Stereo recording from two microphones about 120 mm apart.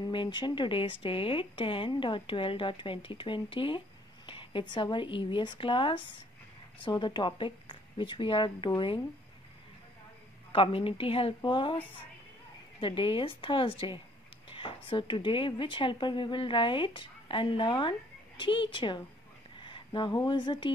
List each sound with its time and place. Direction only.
0.1 s speech: 40° left (ahead or behind)
10.5 s speech: 45° left (ahead or behind)
12.8 s a woman's voice: 45° left (ahead or behind)